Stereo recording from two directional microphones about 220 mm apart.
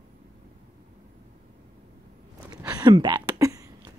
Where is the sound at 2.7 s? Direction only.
20° right (ahead or behind).